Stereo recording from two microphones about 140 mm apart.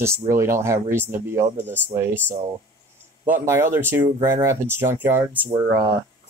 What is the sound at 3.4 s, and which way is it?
Speech, 20° right (ahead or behind).